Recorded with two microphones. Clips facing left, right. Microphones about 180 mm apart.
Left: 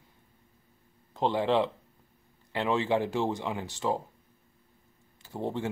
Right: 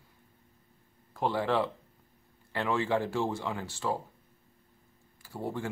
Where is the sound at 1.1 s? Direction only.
20° left (ahead or behind).